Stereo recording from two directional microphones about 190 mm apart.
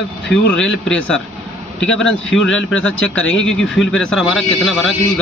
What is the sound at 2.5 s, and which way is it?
Speech, 90° left.